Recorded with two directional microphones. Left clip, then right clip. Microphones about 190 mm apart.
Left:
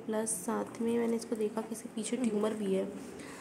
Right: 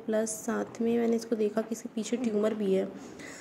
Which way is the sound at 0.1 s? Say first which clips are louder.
Right 5 dB; 10° right (ahead or behind).